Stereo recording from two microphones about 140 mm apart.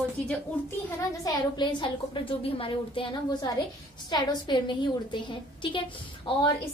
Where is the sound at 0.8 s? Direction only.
25° left (ahead or behind).